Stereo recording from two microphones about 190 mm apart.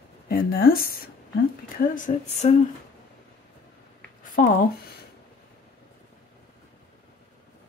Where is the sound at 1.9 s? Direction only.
45° left (ahead or behind).